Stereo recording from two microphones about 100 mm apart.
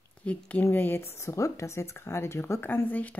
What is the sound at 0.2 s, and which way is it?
Speech, 15° left (ahead or behind).